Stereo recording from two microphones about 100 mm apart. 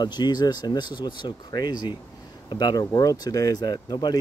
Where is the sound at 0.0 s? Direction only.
45° left (ahead or behind).